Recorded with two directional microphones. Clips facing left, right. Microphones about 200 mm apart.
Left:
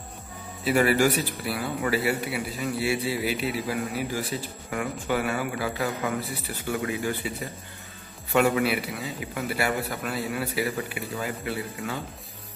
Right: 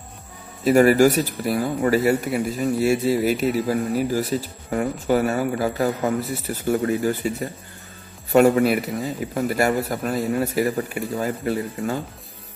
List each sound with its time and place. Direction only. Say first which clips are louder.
0.7 s speech: right 7 dB; 45° right (ahead or behind)